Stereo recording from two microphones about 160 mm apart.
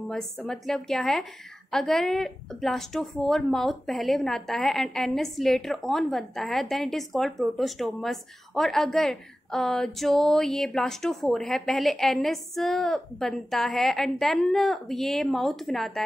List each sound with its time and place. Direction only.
0.1 s speech: 5° left (ahead or behind)